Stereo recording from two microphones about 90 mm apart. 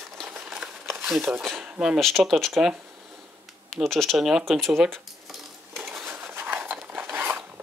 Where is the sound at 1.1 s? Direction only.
Centre (ahead or behind).